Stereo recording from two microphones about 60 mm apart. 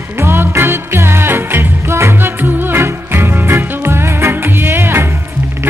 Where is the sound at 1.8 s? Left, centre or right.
Right.